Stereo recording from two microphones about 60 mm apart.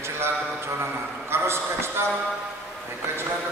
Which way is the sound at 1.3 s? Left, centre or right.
Right.